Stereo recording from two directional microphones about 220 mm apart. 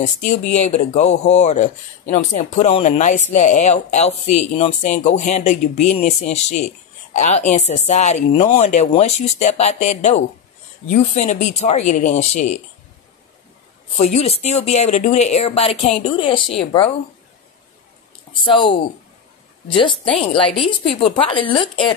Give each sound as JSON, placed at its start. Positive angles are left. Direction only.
{"t": 0.0, "sound": "speech", "side_deg": 35}
{"t": 13.9, "sound": "speech", "side_deg": 30}
{"t": 18.3, "sound": "speech", "side_deg": 25}
{"t": 20.2, "sound": "speech", "side_deg": 25}